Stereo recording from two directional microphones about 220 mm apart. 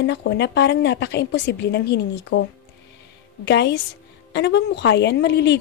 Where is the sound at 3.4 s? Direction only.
50° left (ahead or behind).